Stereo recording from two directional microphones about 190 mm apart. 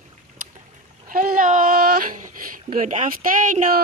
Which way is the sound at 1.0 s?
45° right (ahead or behind).